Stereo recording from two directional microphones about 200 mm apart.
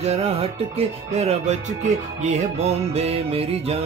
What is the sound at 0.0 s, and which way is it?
Music, 30° right (ahead or behind).